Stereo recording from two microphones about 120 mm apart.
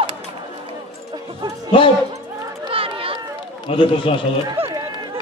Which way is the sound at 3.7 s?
50° left (ahead or behind).